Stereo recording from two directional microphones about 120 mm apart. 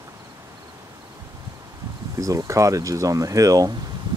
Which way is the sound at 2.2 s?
30° right (ahead or behind).